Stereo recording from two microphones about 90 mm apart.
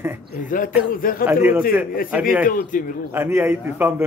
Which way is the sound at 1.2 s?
15° right (ahead or behind).